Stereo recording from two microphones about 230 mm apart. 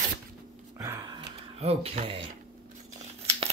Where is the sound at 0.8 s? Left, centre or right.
Centre.